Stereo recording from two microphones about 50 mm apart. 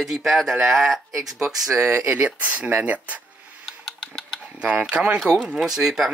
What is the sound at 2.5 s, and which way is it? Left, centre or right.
Speech, right.